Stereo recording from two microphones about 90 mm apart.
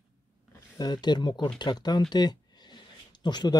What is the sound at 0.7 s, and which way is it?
Speech, 50° left (ahead or behind).